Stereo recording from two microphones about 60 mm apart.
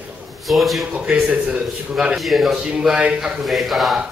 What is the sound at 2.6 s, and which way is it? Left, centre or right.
Speech, centre.